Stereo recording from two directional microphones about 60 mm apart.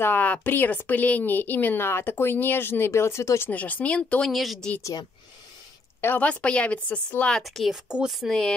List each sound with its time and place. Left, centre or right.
0.0 s speech: left
3.4 s speech: left
4.3 s speech: centre
6.1 s speech: centre
7.4 s speech: centre
7.7 s speech: centre
8.1 s speech: centre